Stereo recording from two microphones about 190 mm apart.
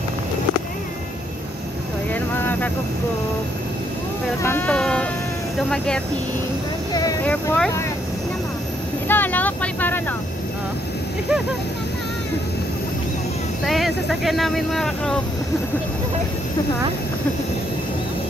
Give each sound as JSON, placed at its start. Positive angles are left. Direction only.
{"t": 2.3, "sound": "vehicle", "side_deg": 10}
{"t": 4.4, "sound": "speech", "side_deg": 10}
{"t": 6.9, "sound": "vehicle", "side_deg": 20}
{"t": 7.2, "sound": "speech", "side_deg": 5}
{"t": 9.0, "sound": "vehicle", "side_deg": 10}
{"t": 13.7, "sound": "speech", "side_deg": 0}